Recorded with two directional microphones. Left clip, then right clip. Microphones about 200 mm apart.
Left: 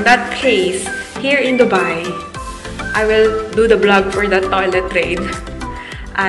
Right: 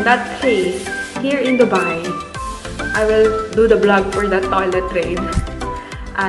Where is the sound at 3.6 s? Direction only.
20° right (ahead or behind).